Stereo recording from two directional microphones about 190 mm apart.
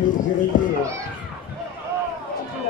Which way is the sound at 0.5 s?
45° left (ahead or behind).